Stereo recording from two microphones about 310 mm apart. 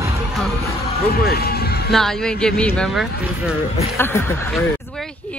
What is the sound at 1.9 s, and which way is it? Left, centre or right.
Speech, centre.